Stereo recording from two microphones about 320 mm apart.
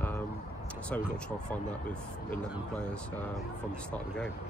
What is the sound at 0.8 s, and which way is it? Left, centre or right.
Speech, centre.